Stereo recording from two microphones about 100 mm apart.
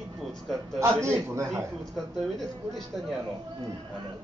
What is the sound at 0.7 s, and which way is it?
Speech, 25° right (ahead or behind).